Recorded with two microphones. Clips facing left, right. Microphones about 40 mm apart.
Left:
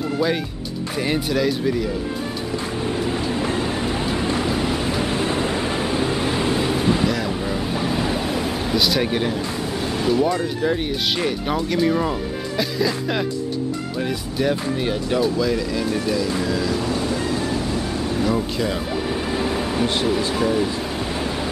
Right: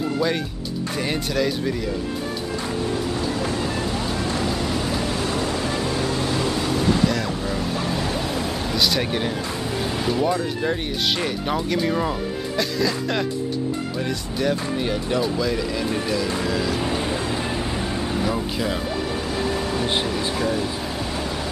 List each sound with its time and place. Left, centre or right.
0.2 s speech: centre
3.1 s train: left
3.4 s vehicle: left; by 10.3 s centre
10.7 s speech: centre
14.4 s speech: centre
16.7 s vehicle: right
18.2 s speech: centre
19.2 s vehicle: centre
20.3 s a sound: centre